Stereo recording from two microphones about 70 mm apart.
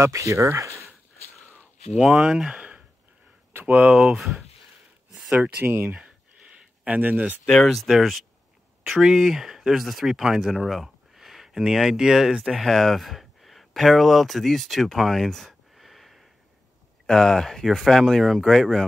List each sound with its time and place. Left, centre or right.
0.0 s speech: right
2.0 s speech: centre
4.2 s speech: centre
5.6 s speech: right
7.4 s speech: centre
12.6 s speech: centre